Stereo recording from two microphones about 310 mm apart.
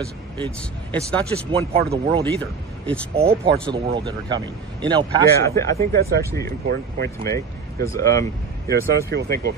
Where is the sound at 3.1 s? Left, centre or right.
Centre.